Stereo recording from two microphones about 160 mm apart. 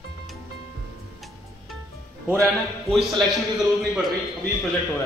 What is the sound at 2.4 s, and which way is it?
Speech, centre (ahead or behind).